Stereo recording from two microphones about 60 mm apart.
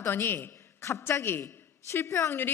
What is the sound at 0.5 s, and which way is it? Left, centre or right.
Speech, left.